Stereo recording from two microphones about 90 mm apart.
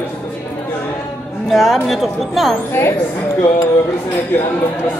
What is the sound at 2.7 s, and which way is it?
Speech, 30° left (ahead or behind).